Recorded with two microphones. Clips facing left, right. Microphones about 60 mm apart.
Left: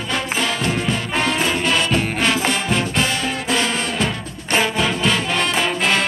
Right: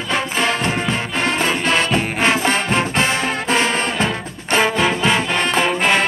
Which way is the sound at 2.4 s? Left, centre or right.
Right.